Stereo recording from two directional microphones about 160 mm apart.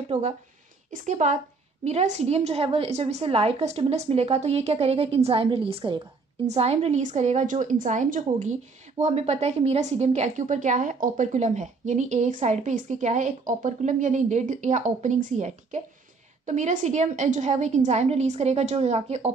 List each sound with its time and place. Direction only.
0.1 s a woman's voice: 50° right (ahead or behind)